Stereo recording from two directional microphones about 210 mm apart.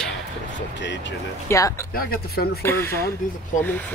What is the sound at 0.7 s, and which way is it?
Speech, 60° left (ahead or behind).